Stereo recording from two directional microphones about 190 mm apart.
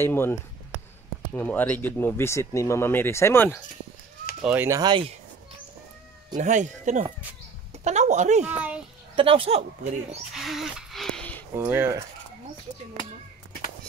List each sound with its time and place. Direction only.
0.0 s speech: 10° left (ahead or behind)
4.4 s speech: 5° right (ahead or behind)
4.6 s speech: 20° right (ahead or behind)
6.3 s speech: 40° right (ahead or behind)
8.5 s speech: 10° right (ahead or behind)
9.1 s speech: 30° right (ahead or behind)
10.3 s a sound: centre (ahead or behind)
11.5 s speech: 10° right (ahead or behind)